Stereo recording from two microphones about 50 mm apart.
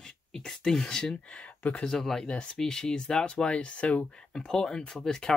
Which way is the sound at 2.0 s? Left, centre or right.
Centre.